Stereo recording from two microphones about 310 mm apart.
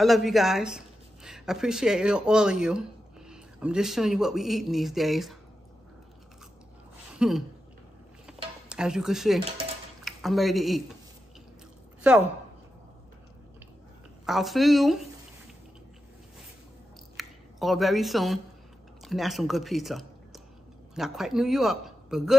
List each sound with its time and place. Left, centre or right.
0.0 s speech: centre
7.2 s a sound: centre
10.0 s speech: centre
12.1 s a woman's voice: centre
14.2 s a woman's voice: centre
17.2 s speech: centre